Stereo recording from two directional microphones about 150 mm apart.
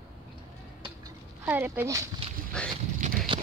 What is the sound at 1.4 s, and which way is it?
Speech, 10° right (ahead or behind).